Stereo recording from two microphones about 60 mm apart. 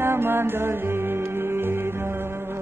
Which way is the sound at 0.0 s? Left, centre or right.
Right.